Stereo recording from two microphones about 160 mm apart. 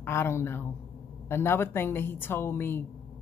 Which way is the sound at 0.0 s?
15° left (ahead or behind).